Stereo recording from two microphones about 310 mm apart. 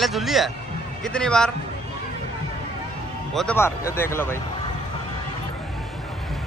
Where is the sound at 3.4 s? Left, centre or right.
Centre.